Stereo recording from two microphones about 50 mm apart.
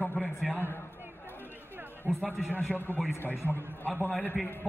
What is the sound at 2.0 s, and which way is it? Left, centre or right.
Speech, right.